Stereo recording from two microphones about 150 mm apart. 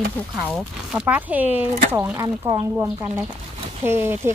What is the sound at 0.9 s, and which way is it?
Speech, 10° right (ahead or behind).